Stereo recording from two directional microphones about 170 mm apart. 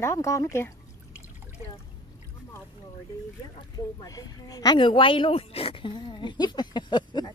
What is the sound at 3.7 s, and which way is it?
Speech, 20° left (ahead or behind).